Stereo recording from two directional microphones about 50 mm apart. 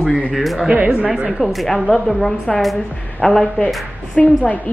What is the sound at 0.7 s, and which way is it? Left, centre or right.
Speech, right.